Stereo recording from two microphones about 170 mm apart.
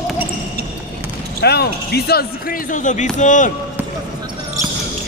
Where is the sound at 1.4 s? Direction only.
70° left (ahead or behind); by 3.5 s 45° left (ahead or behind).